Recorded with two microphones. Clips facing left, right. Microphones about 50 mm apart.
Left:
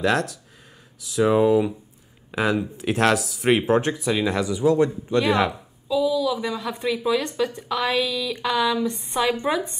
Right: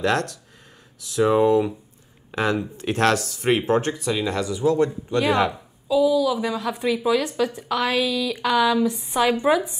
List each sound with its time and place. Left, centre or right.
0.0 s a woman's voice: centre
5.9 s a woman's voice: centre